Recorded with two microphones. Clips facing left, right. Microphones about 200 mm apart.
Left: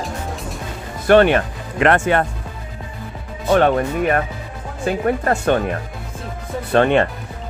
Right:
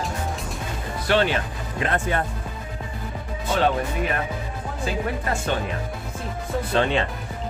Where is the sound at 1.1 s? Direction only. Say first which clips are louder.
Left 9 dB; 60° left (ahead or behind); by 2.3 s 75° left (ahead or behind).